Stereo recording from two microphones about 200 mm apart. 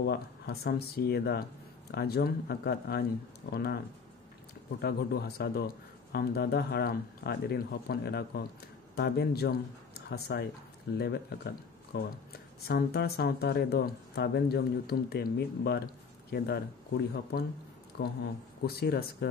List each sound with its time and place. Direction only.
0.0 s speech: 55° left (ahead or behind)
4.8 s speech: 50° left (ahead or behind)